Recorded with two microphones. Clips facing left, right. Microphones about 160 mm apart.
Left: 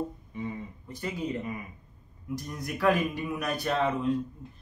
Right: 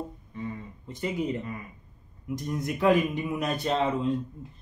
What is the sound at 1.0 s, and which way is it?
Speech, 20° right (ahead or behind).